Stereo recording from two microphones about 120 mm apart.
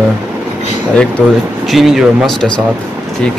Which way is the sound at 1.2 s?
5° right (ahead or behind).